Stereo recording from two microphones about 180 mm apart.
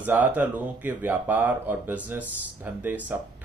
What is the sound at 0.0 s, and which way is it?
Speech, 10° right (ahead or behind).